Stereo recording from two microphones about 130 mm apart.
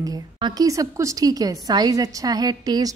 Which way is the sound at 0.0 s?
30° right (ahead or behind).